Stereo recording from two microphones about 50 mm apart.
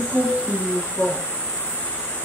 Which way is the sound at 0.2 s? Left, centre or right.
Left.